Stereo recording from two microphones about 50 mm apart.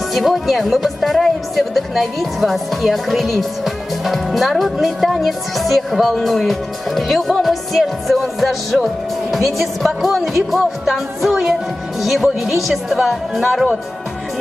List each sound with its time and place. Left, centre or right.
0.1 s speech: centre